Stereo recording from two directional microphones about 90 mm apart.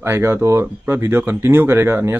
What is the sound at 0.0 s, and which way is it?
A man's voice, 30° right (ahead or behind).